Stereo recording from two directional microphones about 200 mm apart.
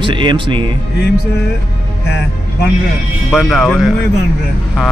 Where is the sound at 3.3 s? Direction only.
Centre (ahead or behind).